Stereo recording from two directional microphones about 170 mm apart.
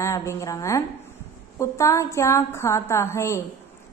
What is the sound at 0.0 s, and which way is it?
A woman's voice, 15° left (ahead or behind).